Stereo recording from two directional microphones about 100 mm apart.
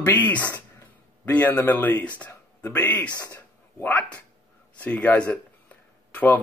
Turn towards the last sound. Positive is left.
turn(degrees=15)  # may be behind; listen again after turning